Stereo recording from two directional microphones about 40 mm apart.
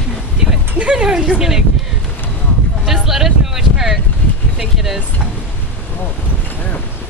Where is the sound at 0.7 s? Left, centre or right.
Right.